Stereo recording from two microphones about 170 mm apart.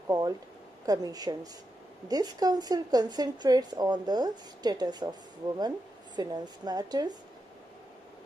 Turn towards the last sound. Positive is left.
turn(degrees=-25)  # may be behind; listen again after turning